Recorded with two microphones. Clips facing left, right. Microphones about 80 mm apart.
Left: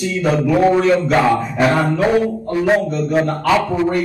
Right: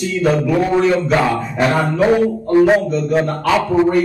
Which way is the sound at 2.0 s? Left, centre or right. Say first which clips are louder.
Right 2 dB; centre.